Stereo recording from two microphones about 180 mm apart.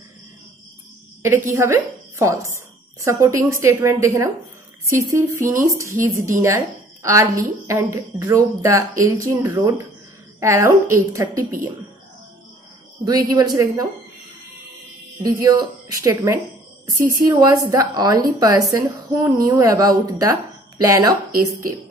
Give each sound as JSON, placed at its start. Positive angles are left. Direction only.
{"t": 1.5, "sound": "a woman's voice", "side_deg": -15}
{"t": 13.3, "sound": "speech", "side_deg": -20}
{"t": 15.2, "sound": "speech", "side_deg": -20}